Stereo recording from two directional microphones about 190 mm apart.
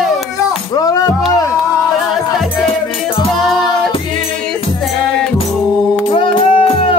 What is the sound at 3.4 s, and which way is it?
Music, centre (ahead or behind).